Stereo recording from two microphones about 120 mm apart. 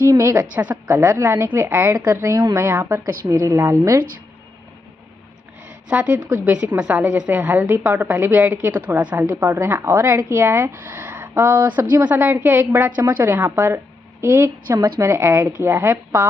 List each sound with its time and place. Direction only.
0.0 s a woman's voice: 25° right (ahead or behind)
0.6 s a woman's voice: 15° right (ahead or behind)
5.9 s a woman's voice: 10° right (ahead or behind)